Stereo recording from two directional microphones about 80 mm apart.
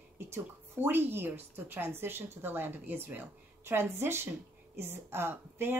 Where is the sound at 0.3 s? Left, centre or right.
Right.